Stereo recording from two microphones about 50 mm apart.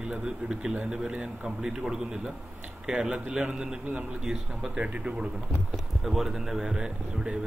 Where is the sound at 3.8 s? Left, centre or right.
Right.